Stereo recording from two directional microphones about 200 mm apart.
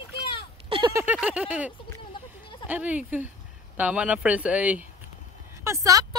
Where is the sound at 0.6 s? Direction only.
25° right (ahead or behind).